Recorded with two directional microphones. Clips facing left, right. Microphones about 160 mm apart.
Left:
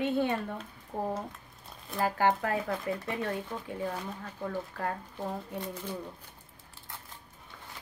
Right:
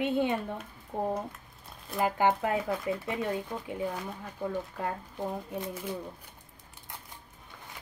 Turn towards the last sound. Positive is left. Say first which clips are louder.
# right 2 dB
turn(degrees=-10)  # may be behind; listen again after turning